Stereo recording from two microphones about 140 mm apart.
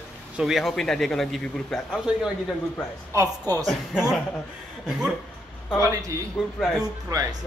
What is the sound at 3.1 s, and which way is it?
Speech, 25° right (ahead or behind).